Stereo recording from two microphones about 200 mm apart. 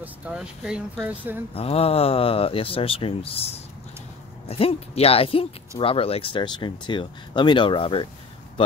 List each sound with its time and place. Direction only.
0.0 s speech: 5° right (ahead or behind)
1.5 s speech: 30° left (ahead or behind)